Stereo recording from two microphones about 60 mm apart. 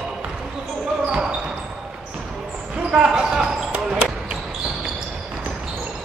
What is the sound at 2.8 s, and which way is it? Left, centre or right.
Basketball bounce, right.